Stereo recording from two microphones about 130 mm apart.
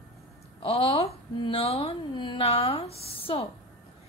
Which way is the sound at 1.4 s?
40° left (ahead or behind).